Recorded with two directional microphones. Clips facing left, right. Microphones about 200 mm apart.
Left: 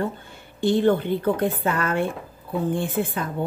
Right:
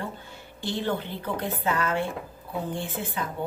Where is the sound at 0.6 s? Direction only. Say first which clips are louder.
Left 10 dB; 55° left (ahead or behind).